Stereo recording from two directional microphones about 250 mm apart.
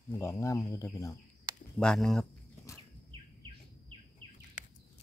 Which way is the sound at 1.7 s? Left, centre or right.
Centre.